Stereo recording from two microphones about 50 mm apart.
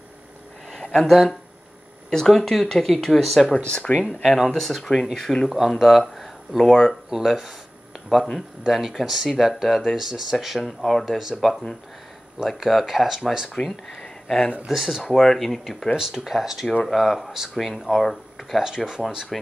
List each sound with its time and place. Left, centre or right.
1.0 s speech: centre
3.7 s speech: left
4.6 s speech: centre
11.1 s speech: centre
12.6 s speech: centre
13.7 s speech: centre
14.7 s speech: centre
15.0 s speech: centre
16.0 s speech: centre